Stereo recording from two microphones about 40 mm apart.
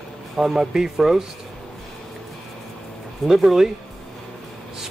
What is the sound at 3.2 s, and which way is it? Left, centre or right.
Speech, centre.